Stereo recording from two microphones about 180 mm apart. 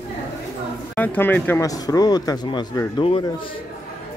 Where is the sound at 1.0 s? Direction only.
10° left (ahead or behind); by 3.5 s 30° left (ahead or behind).